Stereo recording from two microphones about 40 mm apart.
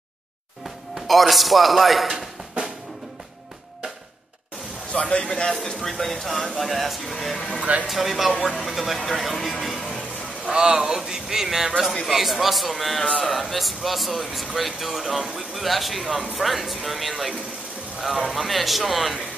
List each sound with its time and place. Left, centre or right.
0.9 s a man's voice: centre
4.9 s a man's voice: left
5.5 s speech: centre
10.5 s speech: centre